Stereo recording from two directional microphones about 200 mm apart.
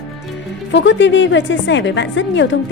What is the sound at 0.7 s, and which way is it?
A woman's voice, 65° left (ahead or behind).